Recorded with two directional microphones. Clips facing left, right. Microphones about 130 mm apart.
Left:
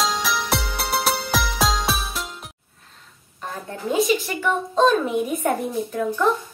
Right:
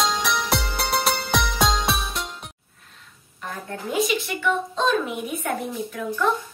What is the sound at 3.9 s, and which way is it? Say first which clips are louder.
A woman's voice: left 3 dB; 40° left (ahead or behind).